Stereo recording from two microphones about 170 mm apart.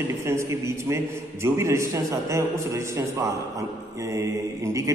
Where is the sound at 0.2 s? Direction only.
15° right (ahead or behind).